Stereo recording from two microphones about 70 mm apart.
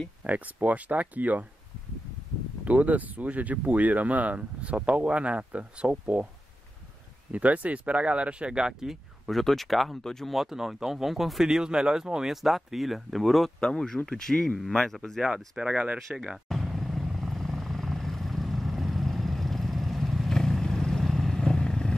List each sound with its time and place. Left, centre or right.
0.2 s speech: right
2.6 s speech: right
7.3 s speech: centre
15.3 s speech: centre
16.2 s vehicle: centre